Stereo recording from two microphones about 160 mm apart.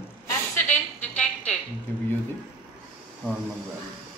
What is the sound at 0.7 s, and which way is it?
Music, 5° left (ahead or behind).